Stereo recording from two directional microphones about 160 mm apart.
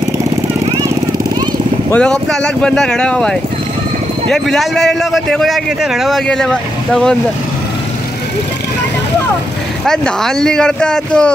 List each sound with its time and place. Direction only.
1.9 s a man's voice: 5° left (ahead or behind)
9.8 s a man's voice: 5° left (ahead or behind)